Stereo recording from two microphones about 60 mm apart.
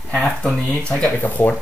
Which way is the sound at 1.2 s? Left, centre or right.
Left.